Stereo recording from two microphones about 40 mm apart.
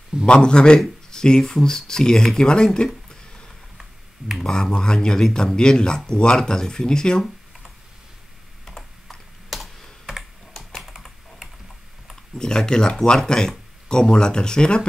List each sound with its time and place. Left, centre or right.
0.3 s speech: left
4.4 s speech: centre
9.5 s computer keyboard: centre
10.5 s typing: centre
10.9 s typing: centre
12.4 s speech: centre